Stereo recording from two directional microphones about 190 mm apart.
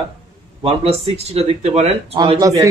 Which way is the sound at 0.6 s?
30° right (ahead or behind).